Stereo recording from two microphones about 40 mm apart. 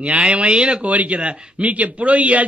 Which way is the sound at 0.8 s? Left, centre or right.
Right.